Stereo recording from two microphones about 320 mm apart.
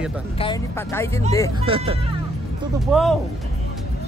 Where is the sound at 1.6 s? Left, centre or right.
Centre.